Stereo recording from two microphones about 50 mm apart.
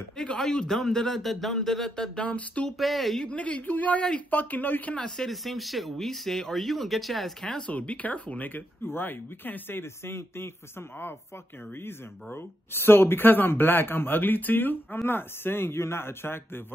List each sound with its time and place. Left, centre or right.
0.4 s a man's voice: centre
2.1 s speech: left
2.8 s speech: centre
3.3 s speech: left
4.9 s a man's voice: centre
5.3 s speech: centre
7.4 s a man's voice: centre
7.7 s speech: left
8.8 s speech: left
12.4 s speech: left